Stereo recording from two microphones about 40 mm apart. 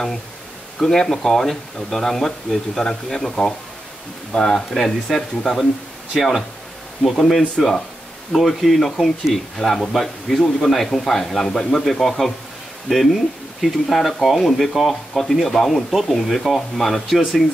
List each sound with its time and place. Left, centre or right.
0.8 s speech: centre
4.7 s speech: centre